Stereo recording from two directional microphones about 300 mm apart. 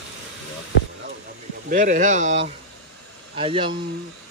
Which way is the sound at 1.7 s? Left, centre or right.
Right.